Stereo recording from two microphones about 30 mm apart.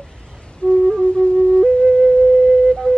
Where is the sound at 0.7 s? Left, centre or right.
Centre.